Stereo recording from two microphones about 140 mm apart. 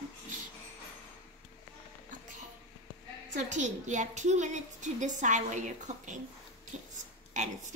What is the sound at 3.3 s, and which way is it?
A woman's voice, 60° right (ahead or behind).